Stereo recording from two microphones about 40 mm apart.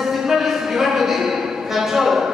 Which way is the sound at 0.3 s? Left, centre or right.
Centre.